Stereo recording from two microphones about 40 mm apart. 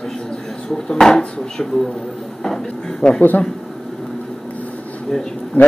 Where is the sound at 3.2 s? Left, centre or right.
Left.